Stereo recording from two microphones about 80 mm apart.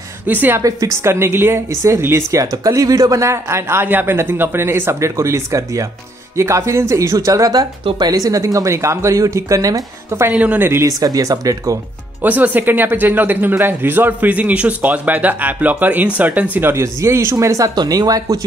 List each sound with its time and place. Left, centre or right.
0.3 s speech: right
0.6 s speech: right
10.3 s speech: centre
10.7 s speech: right
11.0 s speech: right
12.2 s speech: right
17.7 s speech: right